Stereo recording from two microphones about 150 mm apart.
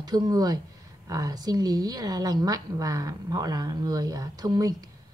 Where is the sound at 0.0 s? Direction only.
25° right (ahead or behind).